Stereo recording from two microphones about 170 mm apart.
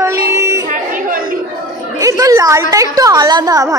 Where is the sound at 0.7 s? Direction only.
55° right (ahead or behind).